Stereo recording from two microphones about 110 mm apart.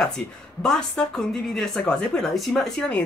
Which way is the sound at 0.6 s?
5° left (ahead or behind).